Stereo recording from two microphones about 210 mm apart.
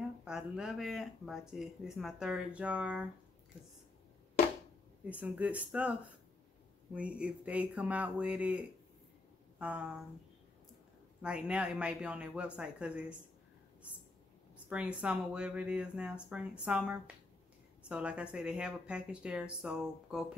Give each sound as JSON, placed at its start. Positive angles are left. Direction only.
{"t": 0.2, "sound": "speech", "side_deg": -5}
{"t": 5.1, "sound": "speech", "side_deg": -5}
{"t": 11.2, "sound": "speech", "side_deg": -5}
{"t": 14.7, "sound": "speech", "side_deg": -5}